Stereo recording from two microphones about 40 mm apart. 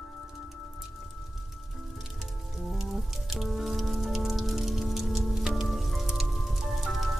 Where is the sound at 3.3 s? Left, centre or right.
Centre.